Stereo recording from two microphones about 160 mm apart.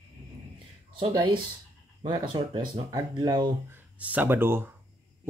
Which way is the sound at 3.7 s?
10° right (ahead or behind).